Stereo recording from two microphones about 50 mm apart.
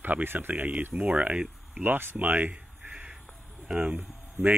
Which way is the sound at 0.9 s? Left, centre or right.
Right.